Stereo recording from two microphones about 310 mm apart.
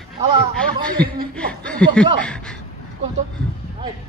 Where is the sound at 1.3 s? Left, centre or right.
Centre.